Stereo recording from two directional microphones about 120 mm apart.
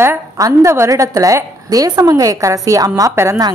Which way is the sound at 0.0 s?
20° right (ahead or behind).